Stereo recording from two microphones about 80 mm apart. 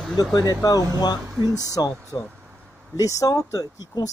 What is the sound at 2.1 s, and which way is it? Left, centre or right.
Speech, left.